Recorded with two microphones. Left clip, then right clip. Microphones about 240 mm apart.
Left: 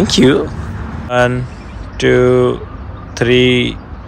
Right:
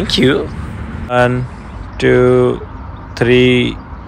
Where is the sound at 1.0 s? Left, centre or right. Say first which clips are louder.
Even; centre.